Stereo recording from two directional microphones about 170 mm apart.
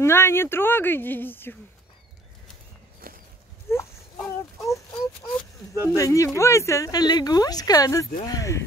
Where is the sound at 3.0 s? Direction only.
60° right (ahead or behind).